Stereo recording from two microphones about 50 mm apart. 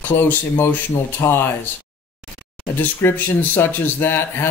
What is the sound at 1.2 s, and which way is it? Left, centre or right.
Speech, left.